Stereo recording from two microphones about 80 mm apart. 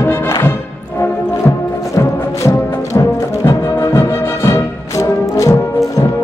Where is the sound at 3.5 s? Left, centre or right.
Left.